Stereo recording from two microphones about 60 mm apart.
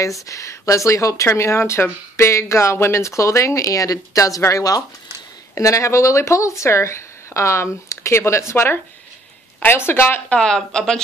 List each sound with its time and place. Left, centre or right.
0.0 s speech: left
4.4 s speech: left
5.6 s speech: left
10.3 s speech: centre